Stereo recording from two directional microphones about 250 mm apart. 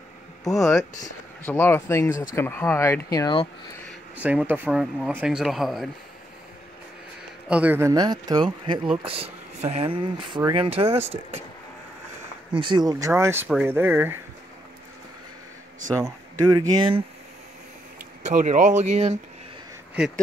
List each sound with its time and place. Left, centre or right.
0.6 s speech: centre
4.2 s speech: centre
7.4 s speech: centre; by 11.0 s right
12.5 s speech: centre
15.9 s speech: centre
18.2 s speech: right
20.0 s speech: centre